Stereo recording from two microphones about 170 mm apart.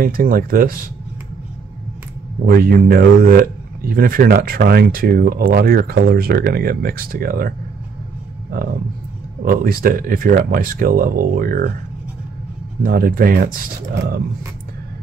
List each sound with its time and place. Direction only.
0.0 s speech: 55° right (ahead or behind)
2.4 s speech: 60° right (ahead or behind)
9.4 s speech: 60° right (ahead or behind)
12.8 s speech: 60° right (ahead or behind)